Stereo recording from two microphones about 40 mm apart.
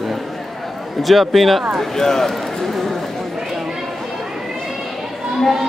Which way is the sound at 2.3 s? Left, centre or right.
Centre.